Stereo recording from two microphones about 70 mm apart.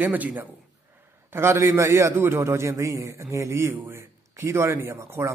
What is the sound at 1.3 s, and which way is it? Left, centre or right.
A man's voice, right.